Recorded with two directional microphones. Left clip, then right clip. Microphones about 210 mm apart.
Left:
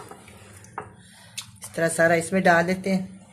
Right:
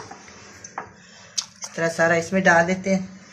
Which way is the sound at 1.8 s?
35° left (ahead or behind).